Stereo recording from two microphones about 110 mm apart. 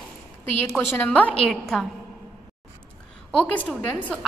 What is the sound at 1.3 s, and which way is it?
Speech, centre (ahead or behind).